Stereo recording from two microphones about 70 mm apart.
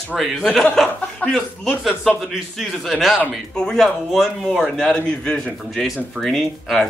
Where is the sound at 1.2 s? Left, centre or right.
Centre.